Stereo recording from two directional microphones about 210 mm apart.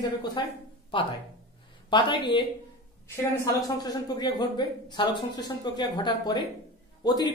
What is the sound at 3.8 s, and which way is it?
Speech, 20° left (ahead or behind).